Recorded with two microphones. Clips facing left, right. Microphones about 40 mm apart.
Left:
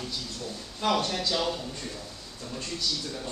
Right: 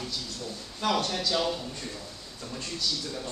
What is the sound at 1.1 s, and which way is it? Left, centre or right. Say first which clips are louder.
Speech: even; centre.